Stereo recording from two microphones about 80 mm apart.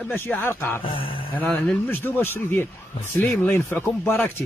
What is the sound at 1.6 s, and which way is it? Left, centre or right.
Speech, left.